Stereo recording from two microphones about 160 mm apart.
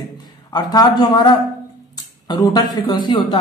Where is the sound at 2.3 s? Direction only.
25° left (ahead or behind).